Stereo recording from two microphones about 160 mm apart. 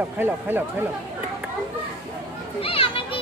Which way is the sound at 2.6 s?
35° left (ahead or behind).